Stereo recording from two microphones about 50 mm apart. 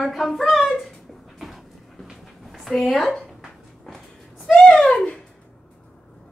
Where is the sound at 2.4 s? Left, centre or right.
Centre.